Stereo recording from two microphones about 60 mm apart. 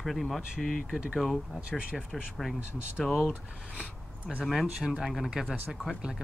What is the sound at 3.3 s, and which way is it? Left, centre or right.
Speech, centre.